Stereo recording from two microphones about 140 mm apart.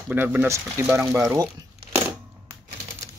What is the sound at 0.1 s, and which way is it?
Speech, 15° right (ahead or behind).